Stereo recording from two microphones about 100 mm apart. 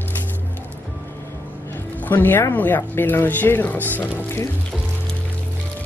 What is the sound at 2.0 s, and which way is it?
Speech, 20° left (ahead or behind).